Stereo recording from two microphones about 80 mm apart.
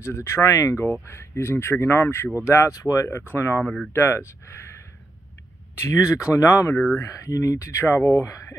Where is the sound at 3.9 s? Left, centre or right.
Left.